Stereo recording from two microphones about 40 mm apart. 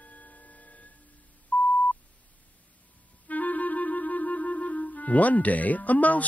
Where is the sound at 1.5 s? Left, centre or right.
Left.